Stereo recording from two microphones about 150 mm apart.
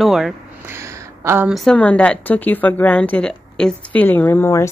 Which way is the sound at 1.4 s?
Centre (ahead or behind).